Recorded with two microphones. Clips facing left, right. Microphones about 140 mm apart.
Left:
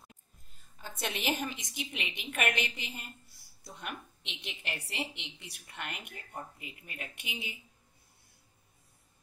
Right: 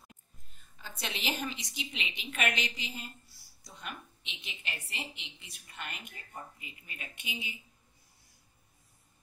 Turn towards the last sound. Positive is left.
turn(degrees=65)  # may be behind; listen again after turning